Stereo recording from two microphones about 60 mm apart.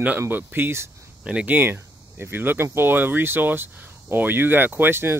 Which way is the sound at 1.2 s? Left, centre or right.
Right.